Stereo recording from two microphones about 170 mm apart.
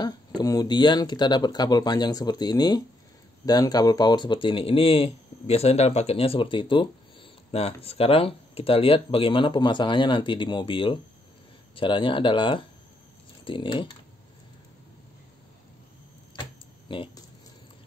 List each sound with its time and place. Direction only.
0.0 s speech: 25° left (ahead or behind)
16.9 s speech: 30° left (ahead or behind)